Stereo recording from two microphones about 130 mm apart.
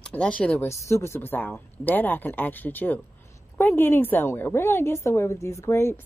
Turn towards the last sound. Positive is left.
turn(degrees=20)  # may be behind; listen again after turning